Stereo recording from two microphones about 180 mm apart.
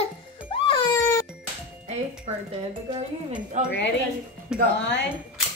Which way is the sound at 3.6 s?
40° right (ahead or behind).